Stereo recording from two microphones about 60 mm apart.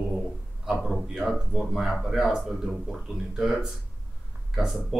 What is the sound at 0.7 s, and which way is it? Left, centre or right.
Speech, centre.